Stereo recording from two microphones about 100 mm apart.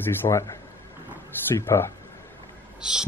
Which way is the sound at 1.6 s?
25° left (ahead or behind).